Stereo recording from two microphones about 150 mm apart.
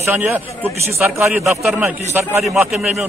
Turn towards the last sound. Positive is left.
turn(degrees=-5)  # may be behind; listen again after turning